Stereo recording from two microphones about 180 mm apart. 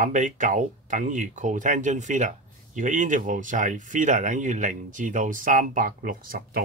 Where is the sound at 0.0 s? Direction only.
45° right (ahead or behind).